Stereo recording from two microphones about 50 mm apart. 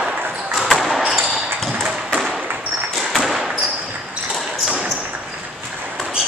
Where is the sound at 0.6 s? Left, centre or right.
Centre.